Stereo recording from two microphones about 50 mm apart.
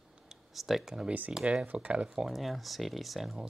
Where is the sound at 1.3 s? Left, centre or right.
Centre.